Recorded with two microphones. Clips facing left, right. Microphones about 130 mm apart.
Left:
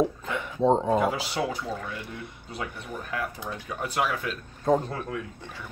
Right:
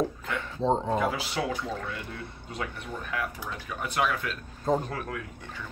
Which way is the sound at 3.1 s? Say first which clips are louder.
Left 2 dB; 30° left (ahead or behind).